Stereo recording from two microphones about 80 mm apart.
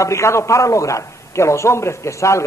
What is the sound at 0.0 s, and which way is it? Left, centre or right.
A man's voice, left.